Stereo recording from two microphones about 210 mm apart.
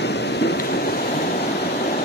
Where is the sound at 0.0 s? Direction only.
55° left (ahead or behind).